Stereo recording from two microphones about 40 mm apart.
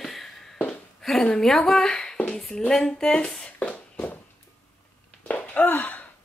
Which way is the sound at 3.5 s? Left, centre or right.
Left.